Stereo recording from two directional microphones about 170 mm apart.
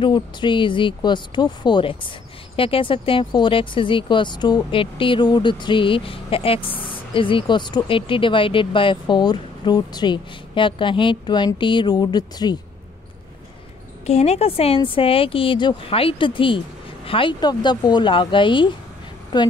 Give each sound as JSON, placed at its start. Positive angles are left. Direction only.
{"t": 0.0, "sound": "speech", "side_deg": 30}
{"t": 14.0, "sound": "speech", "side_deg": 40}